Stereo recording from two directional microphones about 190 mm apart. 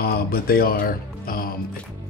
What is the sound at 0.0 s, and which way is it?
Speech, 55° left (ahead or behind).